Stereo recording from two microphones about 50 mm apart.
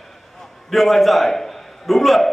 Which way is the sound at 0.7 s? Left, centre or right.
Centre.